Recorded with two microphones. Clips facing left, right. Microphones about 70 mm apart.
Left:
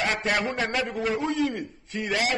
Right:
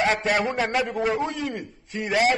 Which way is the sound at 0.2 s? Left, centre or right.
Centre.